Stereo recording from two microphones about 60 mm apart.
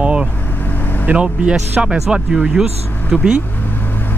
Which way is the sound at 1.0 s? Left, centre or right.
Centre.